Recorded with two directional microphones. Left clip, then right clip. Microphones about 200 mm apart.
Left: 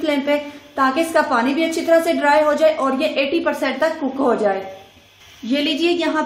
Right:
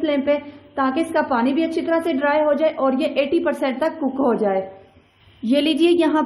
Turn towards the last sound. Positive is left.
turn(degrees=-50)  # may be behind; listen again after turning